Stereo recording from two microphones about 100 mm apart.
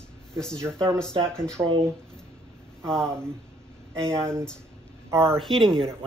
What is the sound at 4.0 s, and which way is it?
Speech, 30° right (ahead or behind).